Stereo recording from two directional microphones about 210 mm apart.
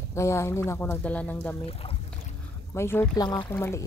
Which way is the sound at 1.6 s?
25° left (ahead or behind).